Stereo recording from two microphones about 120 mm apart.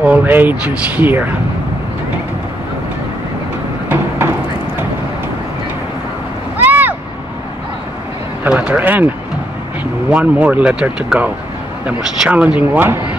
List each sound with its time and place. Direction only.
0.0 s speech: 15° right (ahead or behind)
6.6 s vehicle: 15° right (ahead or behind)
8.5 s speech: 10° right (ahead or behind)
10.1 s speech: 10° right (ahead or behind)